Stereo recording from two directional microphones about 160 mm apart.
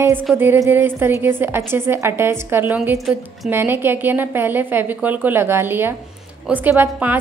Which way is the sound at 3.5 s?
15° right (ahead or behind).